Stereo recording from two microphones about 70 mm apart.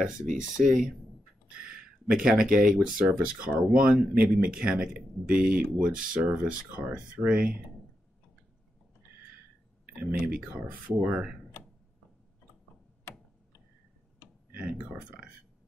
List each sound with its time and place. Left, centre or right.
0.4 s speech: centre
9.9 s speech: centre
14.6 s speech: centre